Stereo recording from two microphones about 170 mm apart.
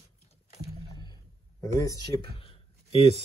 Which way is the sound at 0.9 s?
25° left (ahead or behind).